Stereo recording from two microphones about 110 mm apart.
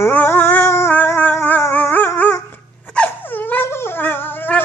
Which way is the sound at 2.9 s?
15° left (ahead or behind).